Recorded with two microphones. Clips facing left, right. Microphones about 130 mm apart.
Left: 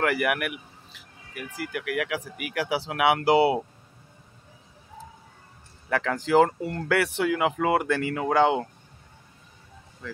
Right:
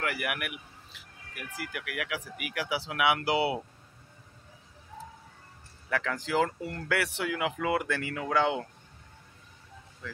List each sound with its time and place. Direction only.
0.0 s speech: 55° left (ahead or behind)
1.3 s speech: 35° left (ahead or behind)
5.9 s speech: 45° left (ahead or behind)